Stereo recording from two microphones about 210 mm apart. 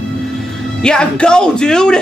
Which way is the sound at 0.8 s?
5° left (ahead or behind).